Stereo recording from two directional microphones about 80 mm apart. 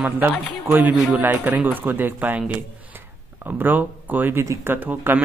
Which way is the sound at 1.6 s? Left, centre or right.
Right.